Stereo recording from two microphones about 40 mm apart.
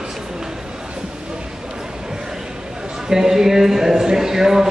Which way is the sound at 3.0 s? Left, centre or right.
Centre.